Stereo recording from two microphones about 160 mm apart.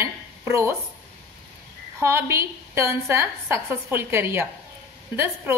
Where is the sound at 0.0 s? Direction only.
15° right (ahead or behind).